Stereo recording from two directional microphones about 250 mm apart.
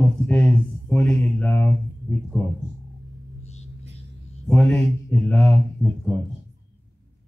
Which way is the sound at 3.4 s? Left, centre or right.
Left.